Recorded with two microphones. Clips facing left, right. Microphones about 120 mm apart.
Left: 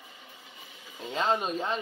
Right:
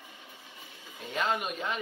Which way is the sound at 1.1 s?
30° left (ahead or behind).